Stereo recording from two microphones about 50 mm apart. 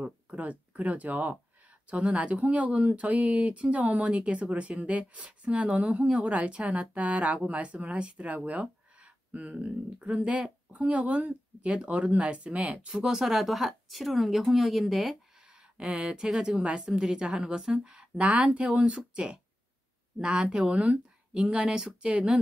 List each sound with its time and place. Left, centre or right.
0.0 s speech: right
12.7 s speech: centre
15.4 s a sound: centre
16.3 s a woman's voice: centre
18.2 s a woman's voice: right